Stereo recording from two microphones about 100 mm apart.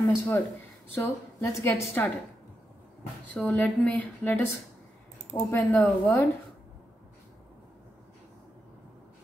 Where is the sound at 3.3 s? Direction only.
15° left (ahead or behind).